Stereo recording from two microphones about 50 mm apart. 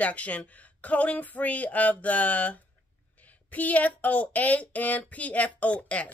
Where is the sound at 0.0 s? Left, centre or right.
Left.